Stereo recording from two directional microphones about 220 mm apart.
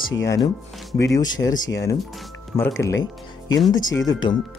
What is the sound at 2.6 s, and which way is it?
Speech, 10° left (ahead or behind).